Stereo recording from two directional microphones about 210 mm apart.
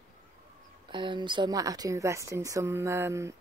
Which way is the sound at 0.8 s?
20° right (ahead or behind).